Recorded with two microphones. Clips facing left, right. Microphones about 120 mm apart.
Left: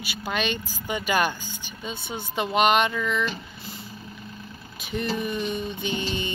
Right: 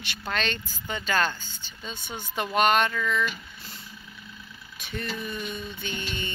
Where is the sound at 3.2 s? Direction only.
30° left (ahead or behind).